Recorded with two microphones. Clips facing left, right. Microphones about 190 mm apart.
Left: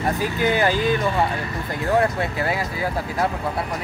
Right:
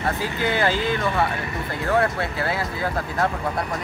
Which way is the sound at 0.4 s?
15° left (ahead or behind).